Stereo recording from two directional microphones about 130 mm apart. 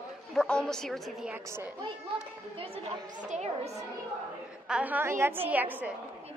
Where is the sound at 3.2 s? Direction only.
60° right (ahead or behind).